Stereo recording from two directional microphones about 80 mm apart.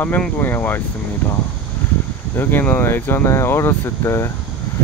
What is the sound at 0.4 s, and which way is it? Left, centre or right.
Speech, left.